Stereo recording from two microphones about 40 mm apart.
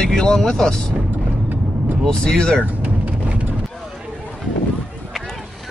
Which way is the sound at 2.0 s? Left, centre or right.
Centre.